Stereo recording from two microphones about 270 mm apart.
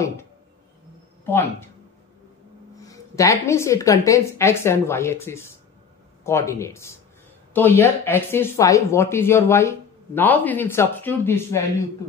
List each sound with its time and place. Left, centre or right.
1.2 s speech: centre
2.8 s speech: centre